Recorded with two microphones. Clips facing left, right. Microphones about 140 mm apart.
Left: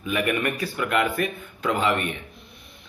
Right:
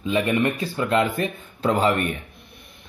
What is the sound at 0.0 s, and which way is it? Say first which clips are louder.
Speech: right 3 dB; 25° right (ahead or behind).